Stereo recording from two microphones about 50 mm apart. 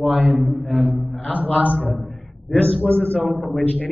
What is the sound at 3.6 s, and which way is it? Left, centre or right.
Speech, left.